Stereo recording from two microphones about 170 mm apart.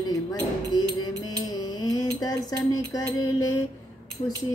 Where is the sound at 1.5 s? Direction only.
20° left (ahead or behind).